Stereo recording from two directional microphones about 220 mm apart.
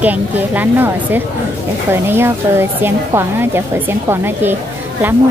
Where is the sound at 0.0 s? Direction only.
5° right (ahead or behind).